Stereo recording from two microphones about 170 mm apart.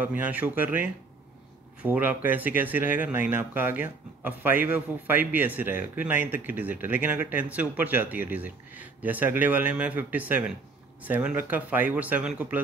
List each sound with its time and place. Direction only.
0.0 s speech: 10° right (ahead or behind)